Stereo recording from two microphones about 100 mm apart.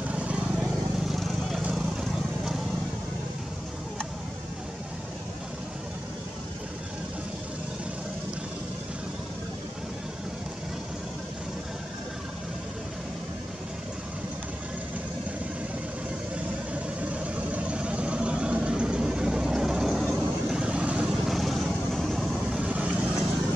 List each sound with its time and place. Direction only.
0.1 s vehicle: 10° right (ahead or behind)
16.7 s vehicle: 15° right (ahead or behind)
22.6 s vehicle: 15° right (ahead or behind)